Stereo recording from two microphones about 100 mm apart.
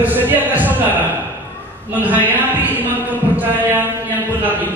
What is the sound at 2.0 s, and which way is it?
Speech, 20° right (ahead or behind).